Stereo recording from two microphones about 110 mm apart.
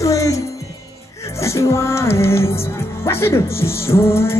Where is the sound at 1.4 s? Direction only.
25° left (ahead or behind).